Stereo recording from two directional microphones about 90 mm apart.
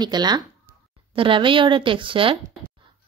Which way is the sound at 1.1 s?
70° right (ahead or behind).